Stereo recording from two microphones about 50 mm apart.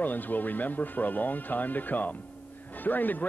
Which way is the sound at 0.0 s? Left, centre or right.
Left.